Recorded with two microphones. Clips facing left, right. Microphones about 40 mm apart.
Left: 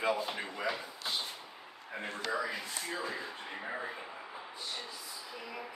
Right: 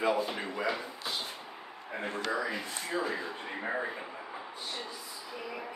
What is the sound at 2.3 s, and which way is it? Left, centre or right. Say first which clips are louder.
Speech: even; centre.